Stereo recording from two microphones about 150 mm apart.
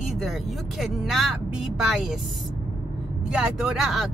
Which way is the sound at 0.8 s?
Centre (ahead or behind).